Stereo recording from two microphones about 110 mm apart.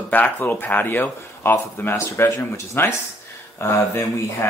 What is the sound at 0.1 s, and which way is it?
Speech, 15° left (ahead or behind).